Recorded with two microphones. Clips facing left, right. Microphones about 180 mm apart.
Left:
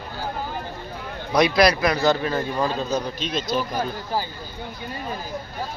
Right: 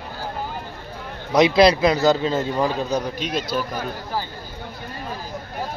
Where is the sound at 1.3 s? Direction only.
25° right (ahead or behind).